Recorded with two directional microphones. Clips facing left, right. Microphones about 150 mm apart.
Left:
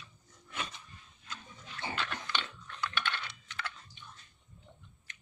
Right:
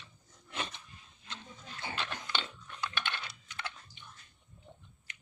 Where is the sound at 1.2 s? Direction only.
25° right (ahead or behind).